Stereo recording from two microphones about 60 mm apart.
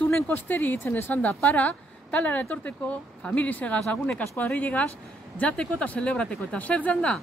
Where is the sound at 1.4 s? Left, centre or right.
Left.